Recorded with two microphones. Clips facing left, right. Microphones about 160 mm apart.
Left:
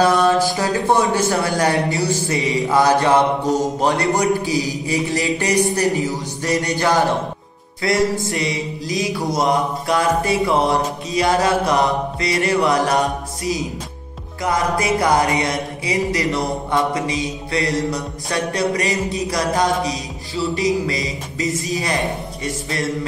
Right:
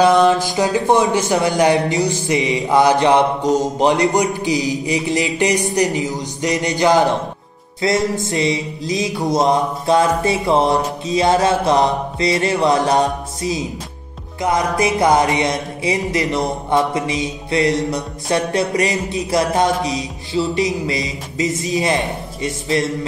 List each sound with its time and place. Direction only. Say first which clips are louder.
0.0 s a man's voice: right 2 dB; 15° right (ahead or behind)
4.5 s music: right 2 dB; 20° right (ahead or behind)